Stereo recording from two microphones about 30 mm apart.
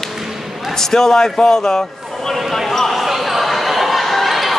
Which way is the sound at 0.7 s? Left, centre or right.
Centre.